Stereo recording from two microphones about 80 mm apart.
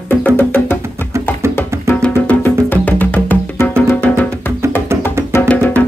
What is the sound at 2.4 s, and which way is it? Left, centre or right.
Music, left.